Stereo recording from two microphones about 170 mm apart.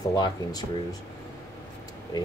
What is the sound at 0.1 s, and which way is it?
Speech, 25° left (ahead or behind).